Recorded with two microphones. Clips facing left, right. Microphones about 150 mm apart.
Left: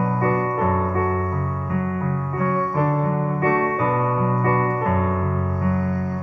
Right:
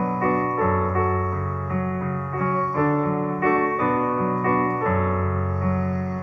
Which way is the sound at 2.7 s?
25° left (ahead or behind).